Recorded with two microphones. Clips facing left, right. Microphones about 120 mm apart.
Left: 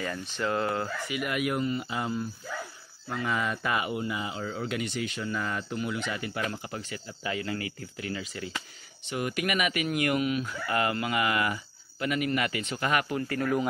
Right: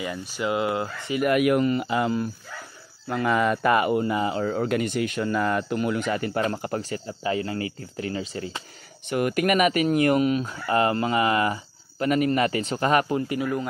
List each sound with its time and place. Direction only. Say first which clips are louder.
0.0 s speech: right 3 dB; 10° right (ahead or behind)
1.2 s speech: right 10 dB; 60° right (ahead or behind); by 2.2 s 75° right (ahead or behind)
3.1 s speech: right 8 dB; 60° right (ahead or behind)
6.8 s speech: right 7 dB; 35° right (ahead or behind)
9.0 s speech: right 8 dB; 55° right (ahead or behind); by 13.2 s 35° right (ahead or behind)